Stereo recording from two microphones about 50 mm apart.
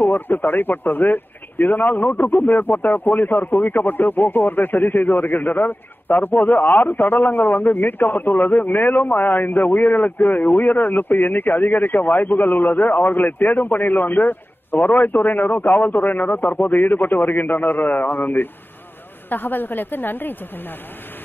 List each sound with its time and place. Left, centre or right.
0.0 s speech: left